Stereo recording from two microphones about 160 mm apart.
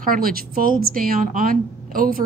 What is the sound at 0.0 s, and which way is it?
Speech, 65° right (ahead or behind).